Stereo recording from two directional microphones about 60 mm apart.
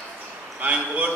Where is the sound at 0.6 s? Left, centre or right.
Right.